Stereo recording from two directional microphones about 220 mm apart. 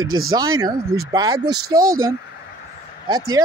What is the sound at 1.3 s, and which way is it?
Speech, 45° right (ahead or behind).